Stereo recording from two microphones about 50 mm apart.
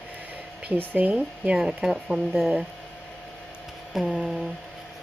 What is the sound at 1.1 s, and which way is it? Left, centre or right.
Speech, right.